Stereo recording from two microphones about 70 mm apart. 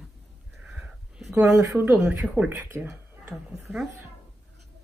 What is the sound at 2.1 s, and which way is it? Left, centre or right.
Speech, right.